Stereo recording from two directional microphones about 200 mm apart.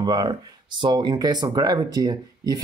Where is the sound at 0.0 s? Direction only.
20° right (ahead or behind).